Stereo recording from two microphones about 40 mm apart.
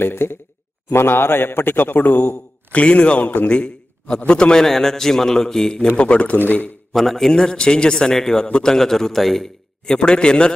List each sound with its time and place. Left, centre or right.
0.0 s speech: left
0.8 s a man's voice: left
2.7 s a man's voice: left
3.2 s speech: left
3.4 s a sound: left
4.3 s a man's voice: left
4.6 s a man's voice: centre; by 6.3 s left
6.3 s speech: left
6.9 s a man's voice: centre
9.9 s a man's voice: left